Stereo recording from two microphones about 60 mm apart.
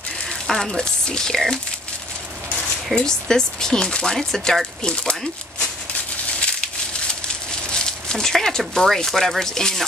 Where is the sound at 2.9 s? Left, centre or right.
Centre.